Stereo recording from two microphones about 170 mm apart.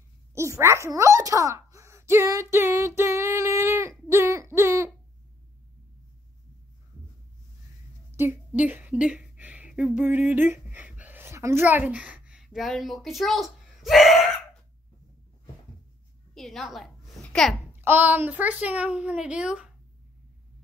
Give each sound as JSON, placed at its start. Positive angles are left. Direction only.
{"t": 0.3, "sound": "speech", "side_deg": -15}
{"t": 2.5, "sound": "female singing", "side_deg": -15}
{"t": 4.1, "sound": "a sound", "side_deg": -15}
{"t": 8.1, "sound": "a sound", "side_deg": -15}
{"t": 16.3, "sound": "a woman's voice", "side_deg": 0}
{"t": 17.7, "sound": "a woman's voice", "side_deg": -10}